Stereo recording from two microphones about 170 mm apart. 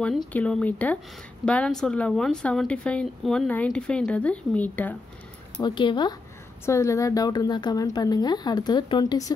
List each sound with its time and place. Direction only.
0.3 s speech: 10° left (ahead or behind)
5.6 s a woman's voice: 25° left (ahead or behind)